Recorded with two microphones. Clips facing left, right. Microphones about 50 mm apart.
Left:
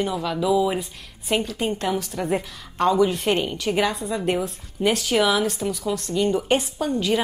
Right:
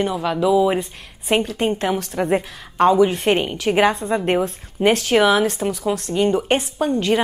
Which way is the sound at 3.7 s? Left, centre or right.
Right.